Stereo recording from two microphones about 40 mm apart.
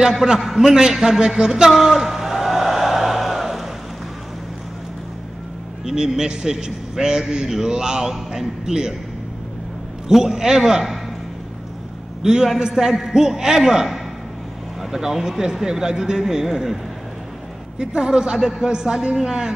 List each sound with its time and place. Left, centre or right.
0.3 s a man's voice: centre
1.7 s a sound: centre
5.9 s a man's voice: centre
10.0 s a man's voice: centre
12.2 s a man's voice: centre
17.7 s a woman's voice: centre